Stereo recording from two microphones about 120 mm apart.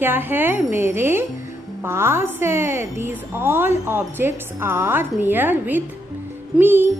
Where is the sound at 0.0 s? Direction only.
15° right (ahead or behind).